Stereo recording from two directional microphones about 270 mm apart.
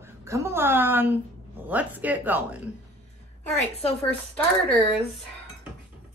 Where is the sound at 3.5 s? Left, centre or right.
Left.